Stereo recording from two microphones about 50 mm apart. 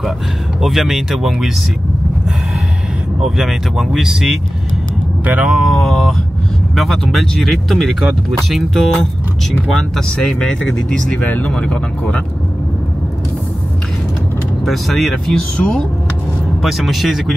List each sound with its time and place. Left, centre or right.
0.6 s speech: centre
3.7 s speech: centre
5.2 s speech: right
5.7 s speech: centre
11.1 s speech: left
11.4 s speech: left
14.6 s speech: centre
15.5 s speech: centre
16.6 s speech: centre